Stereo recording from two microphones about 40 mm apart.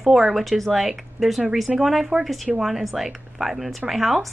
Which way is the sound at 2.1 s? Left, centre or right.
Right.